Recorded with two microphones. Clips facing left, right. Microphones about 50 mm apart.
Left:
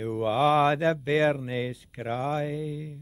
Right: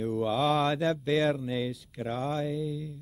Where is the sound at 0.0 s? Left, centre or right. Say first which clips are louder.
Left 3 dB; left.